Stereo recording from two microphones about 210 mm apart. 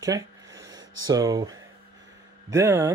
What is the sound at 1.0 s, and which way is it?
Speech, 15° right (ahead or behind).